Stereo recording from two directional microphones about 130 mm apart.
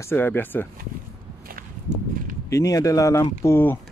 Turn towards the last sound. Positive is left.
turn(degrees=15)  # may be behind; listen again after turning